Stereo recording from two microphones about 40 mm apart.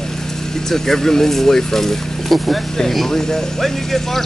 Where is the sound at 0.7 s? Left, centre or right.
Centre.